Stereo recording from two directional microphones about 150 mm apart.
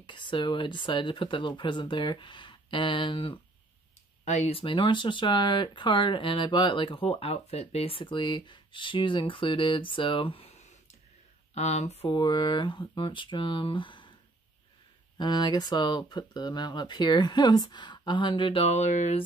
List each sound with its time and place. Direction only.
0.0 s speech: 35° left (ahead or behind)
4.2 s speech: 50° left (ahead or behind)
12.1 s speech: 30° left (ahead or behind)
15.1 s speech: 30° left (ahead or behind); by 19.2 s 50° left (ahead or behind)